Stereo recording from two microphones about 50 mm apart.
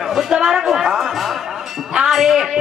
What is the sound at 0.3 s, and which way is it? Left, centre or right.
Speech, centre.